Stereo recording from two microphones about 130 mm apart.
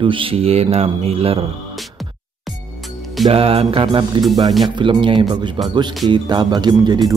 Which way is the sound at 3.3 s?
45° right (ahead or behind).